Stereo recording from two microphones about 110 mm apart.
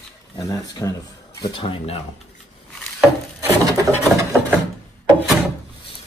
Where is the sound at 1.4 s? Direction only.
50° left (ahead or behind).